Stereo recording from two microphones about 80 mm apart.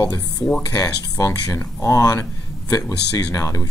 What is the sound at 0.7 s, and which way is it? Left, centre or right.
Speech, left.